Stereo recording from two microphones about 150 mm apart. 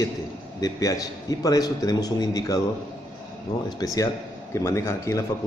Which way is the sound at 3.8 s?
20° left (ahead or behind).